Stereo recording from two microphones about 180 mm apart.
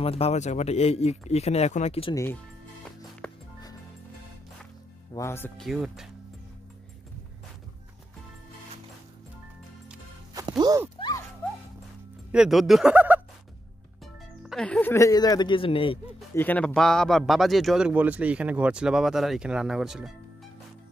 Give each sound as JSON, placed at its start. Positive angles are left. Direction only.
{"t": 0.0, "sound": "speech", "side_deg": 35}
{"t": 3.2, "sound": "music", "side_deg": 5}
{"t": 5.1, "sound": "speech", "side_deg": 15}
{"t": 5.6, "sound": "speech", "side_deg": 0}
{"t": 10.6, "sound": "a sound", "side_deg": -20}
{"t": 12.3, "sound": "speech", "side_deg": -5}
{"t": 14.4, "sound": "speech", "side_deg": 0}
{"t": 16.3, "sound": "speech", "side_deg": 10}